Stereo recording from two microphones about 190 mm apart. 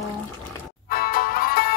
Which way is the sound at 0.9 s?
50° left (ahead or behind).